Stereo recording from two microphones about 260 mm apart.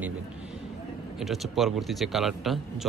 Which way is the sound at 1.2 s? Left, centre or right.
Centre.